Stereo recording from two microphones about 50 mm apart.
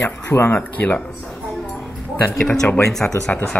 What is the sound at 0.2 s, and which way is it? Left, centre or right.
Speech, left.